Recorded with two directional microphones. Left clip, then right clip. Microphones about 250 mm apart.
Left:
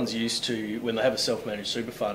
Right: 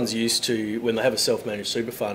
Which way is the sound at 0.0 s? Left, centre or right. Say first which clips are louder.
Right 4 dB; right.